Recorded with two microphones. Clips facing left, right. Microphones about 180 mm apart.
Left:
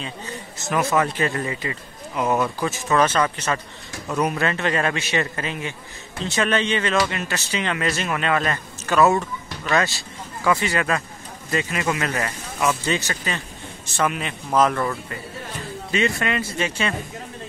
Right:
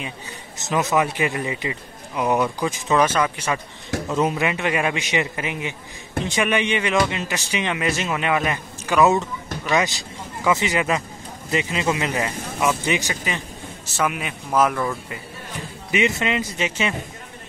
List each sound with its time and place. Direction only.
0.6 s a man's voice: 20° right (ahead or behind)
15.9 s a man's voice: 20° right (ahead or behind)